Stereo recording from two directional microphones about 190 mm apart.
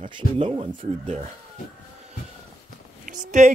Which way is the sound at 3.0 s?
40° right (ahead or behind).